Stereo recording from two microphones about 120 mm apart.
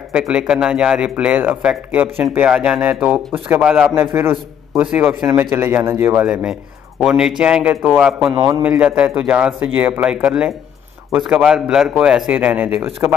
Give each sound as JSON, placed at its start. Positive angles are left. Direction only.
{"t": 0.1, "sound": "a man's voice", "side_deg": -10}
{"t": 3.9, "sound": "a man's voice", "side_deg": -20}
{"t": 6.2, "sound": "a man's voice", "side_deg": -5}
{"t": 13.0, "sound": "speech", "side_deg": -25}